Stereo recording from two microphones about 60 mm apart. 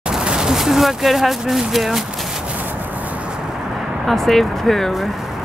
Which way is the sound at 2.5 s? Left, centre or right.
Right.